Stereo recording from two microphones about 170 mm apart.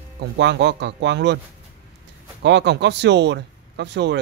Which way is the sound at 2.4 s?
90° right.